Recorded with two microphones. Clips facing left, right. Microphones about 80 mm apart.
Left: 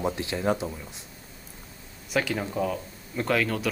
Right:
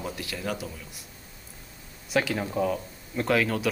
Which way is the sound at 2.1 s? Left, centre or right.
Centre.